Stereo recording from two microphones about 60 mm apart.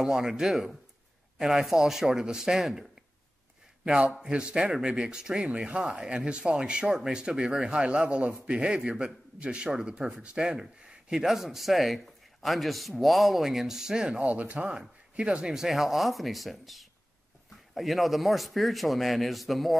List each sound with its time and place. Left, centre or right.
0.0 s speech: centre
3.8 s speech: centre
14.2 s a man's voice: right; by 19.8 s centre